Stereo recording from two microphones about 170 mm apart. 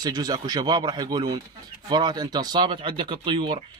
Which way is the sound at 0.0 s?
20° right (ahead or behind).